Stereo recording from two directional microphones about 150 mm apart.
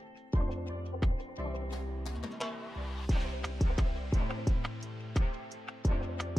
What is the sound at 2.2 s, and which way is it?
Music, centre (ahead or behind).